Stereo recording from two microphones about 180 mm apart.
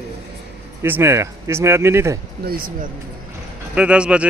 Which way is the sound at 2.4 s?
55° right (ahead or behind).